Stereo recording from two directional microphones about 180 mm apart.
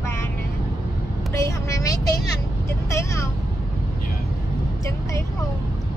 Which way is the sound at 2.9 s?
15° left (ahead or behind).